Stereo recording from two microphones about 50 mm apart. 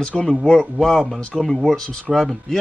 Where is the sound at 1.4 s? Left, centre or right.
Centre.